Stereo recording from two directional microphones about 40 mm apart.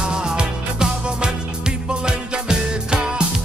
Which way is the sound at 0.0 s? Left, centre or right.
Right.